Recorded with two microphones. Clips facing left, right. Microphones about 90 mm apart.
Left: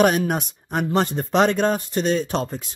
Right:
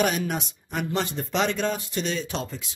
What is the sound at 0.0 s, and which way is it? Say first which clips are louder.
Speech: left 6 dB; 50° left (ahead or behind).